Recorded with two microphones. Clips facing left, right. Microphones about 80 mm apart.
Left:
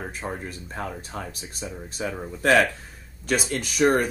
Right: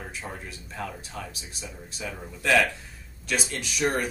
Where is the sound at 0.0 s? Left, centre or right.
Left.